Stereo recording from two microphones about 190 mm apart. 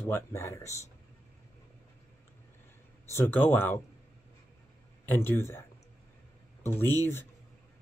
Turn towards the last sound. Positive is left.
turn(degrees=10)  # may be behind; listen again after turning